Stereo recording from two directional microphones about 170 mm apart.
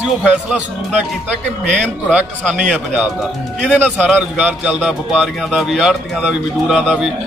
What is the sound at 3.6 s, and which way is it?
Speech, 5° left (ahead or behind).